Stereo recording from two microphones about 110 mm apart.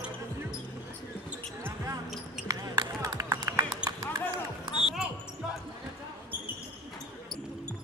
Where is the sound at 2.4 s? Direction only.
30° right (ahead or behind).